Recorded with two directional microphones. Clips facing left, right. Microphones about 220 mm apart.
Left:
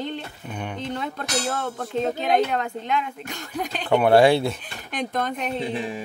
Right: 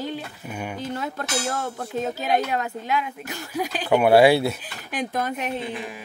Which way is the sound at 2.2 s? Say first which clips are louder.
Left 1 dB; 5° right (ahead or behind).